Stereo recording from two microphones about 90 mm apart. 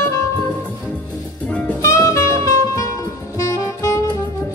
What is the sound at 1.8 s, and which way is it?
Music, 35° left (ahead or behind).